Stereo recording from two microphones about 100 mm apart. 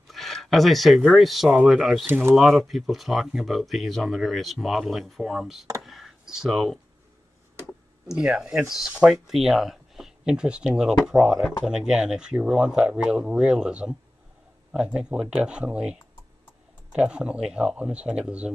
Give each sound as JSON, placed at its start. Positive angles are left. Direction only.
{"t": 0.1, "sound": "speech", "side_deg": 0}
{"t": 2.0, "sound": "speech", "side_deg": -20}
{"t": 2.3, "sound": "speech", "side_deg": 0}
{"t": 5.8, "sound": "computer keyboard", "side_deg": 0}
{"t": 8.1, "sound": "speech", "side_deg": -10}